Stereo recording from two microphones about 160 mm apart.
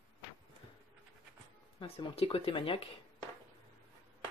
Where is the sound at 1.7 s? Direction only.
35° left (ahead or behind).